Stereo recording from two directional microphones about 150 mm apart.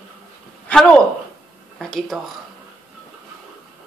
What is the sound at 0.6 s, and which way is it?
Speech, 5° left (ahead or behind).